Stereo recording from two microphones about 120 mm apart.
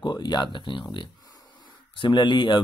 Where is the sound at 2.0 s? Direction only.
40° left (ahead or behind).